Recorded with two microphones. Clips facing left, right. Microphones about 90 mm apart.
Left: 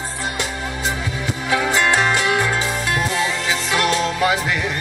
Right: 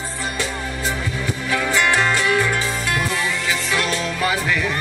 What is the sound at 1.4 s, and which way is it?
Music, 20° left (ahead or behind).